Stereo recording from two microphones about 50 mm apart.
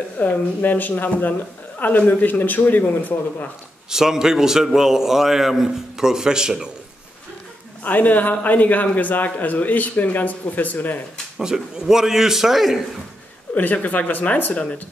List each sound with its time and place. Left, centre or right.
0.2 s a man's voice: left
3.9 s a man's voice: centre
7.8 s a man's voice: left
11.3 s a man's voice: centre
13.6 s a man's voice: left